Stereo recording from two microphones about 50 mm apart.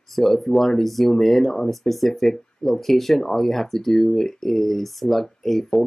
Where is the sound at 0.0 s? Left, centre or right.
Centre.